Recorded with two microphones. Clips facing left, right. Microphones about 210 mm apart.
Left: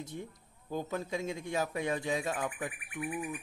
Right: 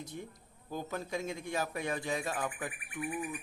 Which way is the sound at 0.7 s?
20° left (ahead or behind).